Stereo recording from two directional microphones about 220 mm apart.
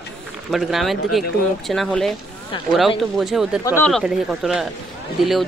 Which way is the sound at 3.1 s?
Centre (ahead or behind).